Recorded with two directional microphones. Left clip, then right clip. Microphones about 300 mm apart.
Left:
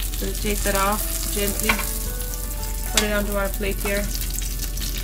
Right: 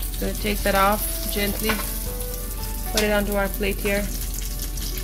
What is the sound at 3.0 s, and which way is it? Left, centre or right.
Stir, right.